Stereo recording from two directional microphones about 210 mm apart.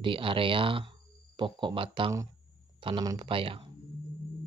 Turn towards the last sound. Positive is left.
turn(degrees=-25)  # may be behind; listen again after turning